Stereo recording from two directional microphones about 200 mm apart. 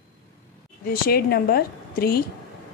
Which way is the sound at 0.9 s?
50° left (ahead or behind).